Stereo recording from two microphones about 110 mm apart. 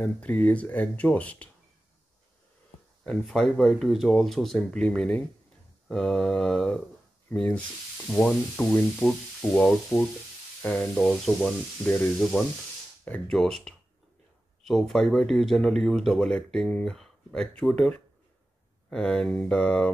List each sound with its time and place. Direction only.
0.0 s speech: 15° left (ahead or behind)
3.0 s speech: 5° left (ahead or behind)
11.0 s speech: 5° right (ahead or behind)
11.8 s speech: 15° left (ahead or behind)
12.2 s speech: centre (ahead or behind)